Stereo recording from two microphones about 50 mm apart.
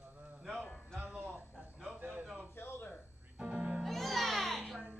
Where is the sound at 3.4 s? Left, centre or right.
Centre.